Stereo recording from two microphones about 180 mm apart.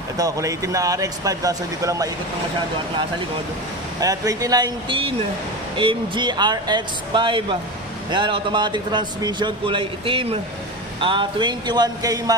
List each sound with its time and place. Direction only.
0.2 s a man's voice: 20° right (ahead or behind)
4.0 s a man's voice: 20° right (ahead or behind)